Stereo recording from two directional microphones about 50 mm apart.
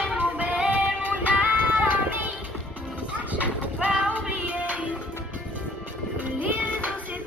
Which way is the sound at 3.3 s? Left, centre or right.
Right.